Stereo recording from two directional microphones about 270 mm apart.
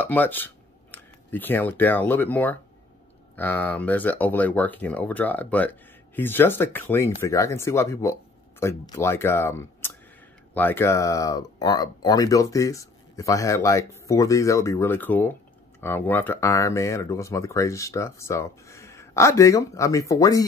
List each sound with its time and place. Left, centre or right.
0.0 s speech: centre